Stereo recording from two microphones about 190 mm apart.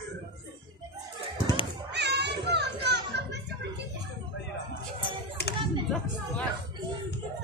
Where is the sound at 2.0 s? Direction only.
60° right (ahead or behind).